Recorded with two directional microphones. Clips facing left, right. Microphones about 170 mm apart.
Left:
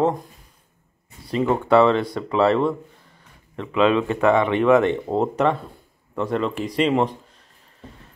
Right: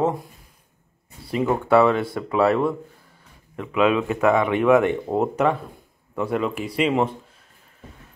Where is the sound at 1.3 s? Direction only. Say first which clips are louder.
Left 1 dB; 10° right (ahead or behind).